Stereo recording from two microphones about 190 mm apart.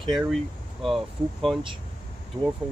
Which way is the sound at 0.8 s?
Centre (ahead or behind).